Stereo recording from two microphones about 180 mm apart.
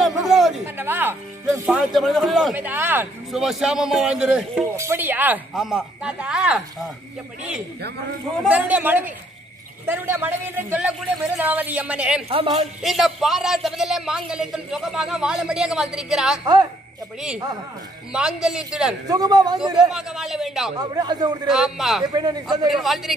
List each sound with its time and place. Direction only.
0.0 s a sound: centre (ahead or behind)
0.7 s music: 10° right (ahead or behind)
1.5 s a man's voice: 10° right (ahead or behind)
2.5 s a man's voice: 10° right (ahead or behind)
8.5 s a man's voice: 10° right (ahead or behind)
12.3 s a woman's voice: 30° right (ahead or behind)
12.8 s a man's voice: centre (ahead or behind)
18.1 s a man's voice: 5° right (ahead or behind)
19.0 s speech: 20° right (ahead or behind)
19.6 s a man's voice: 5° right (ahead or behind)
20.7 s speech: 25° right (ahead or behind)
21.5 s a man's voice: centre (ahead or behind)
22.1 s speech: 25° right (ahead or behind)
22.7 s a man's voice: centre (ahead or behind)